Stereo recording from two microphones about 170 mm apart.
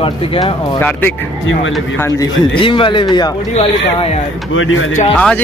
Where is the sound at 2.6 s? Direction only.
30° left (ahead or behind).